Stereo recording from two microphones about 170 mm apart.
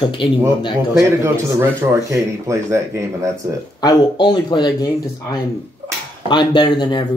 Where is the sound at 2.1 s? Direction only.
15° right (ahead or behind).